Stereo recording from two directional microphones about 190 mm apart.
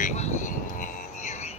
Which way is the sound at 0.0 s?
35° left (ahead or behind).